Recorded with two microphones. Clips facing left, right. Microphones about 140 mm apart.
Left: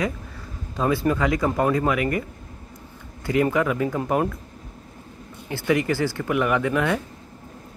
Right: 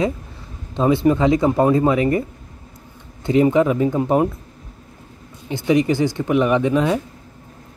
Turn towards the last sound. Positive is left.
turn(degrees=-20)  # may be behind; listen again after turning